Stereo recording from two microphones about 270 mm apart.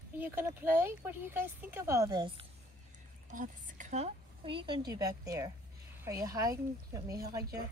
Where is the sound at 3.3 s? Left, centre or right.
Right; by 7.6 s centre.